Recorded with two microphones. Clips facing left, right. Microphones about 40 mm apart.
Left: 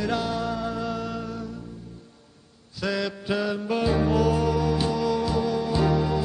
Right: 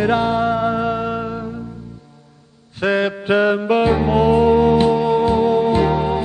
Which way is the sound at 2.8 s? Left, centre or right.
Right.